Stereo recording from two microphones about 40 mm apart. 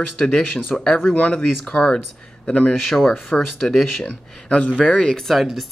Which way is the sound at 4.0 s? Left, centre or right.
Left.